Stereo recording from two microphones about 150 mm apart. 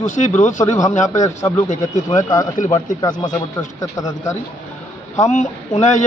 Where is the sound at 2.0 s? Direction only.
25° left (ahead or behind).